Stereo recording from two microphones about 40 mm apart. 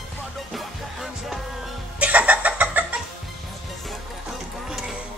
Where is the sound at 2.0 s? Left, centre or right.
Right.